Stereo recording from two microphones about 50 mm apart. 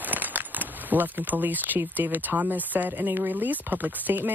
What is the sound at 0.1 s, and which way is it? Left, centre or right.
Speech, right.